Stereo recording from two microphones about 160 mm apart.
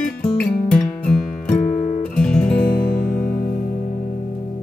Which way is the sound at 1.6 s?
45° left (ahead or behind).